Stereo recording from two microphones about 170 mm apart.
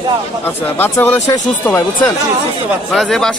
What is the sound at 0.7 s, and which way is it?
Speech, 10° left (ahead or behind).